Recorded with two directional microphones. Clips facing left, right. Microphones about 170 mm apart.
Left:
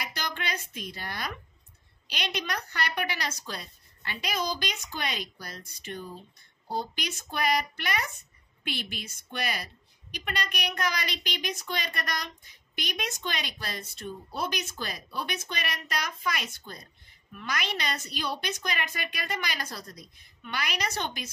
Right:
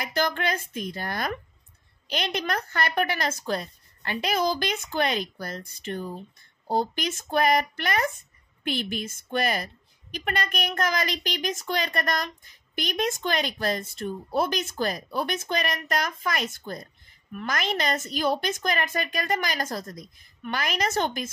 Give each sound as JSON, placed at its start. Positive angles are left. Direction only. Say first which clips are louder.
{"t": 0.0, "sound": "a woman's voice", "louder": "right 9 dB", "side_deg": -50}